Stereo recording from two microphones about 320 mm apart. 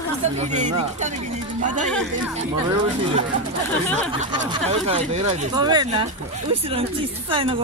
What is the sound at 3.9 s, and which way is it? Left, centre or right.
Speech, centre.